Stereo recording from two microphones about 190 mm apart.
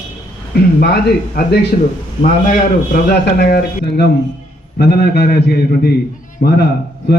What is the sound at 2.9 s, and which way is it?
A man's voice, 55° left (ahead or behind).